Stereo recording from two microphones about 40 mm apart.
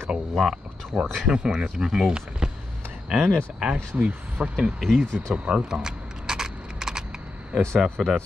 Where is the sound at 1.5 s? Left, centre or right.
Centre.